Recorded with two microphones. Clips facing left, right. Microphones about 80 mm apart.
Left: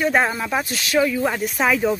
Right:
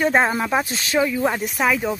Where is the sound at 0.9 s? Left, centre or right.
Centre.